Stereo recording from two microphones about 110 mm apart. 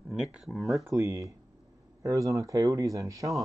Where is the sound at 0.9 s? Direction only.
30° right (ahead or behind).